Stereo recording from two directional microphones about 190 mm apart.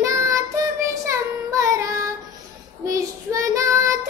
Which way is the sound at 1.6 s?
15° right (ahead or behind).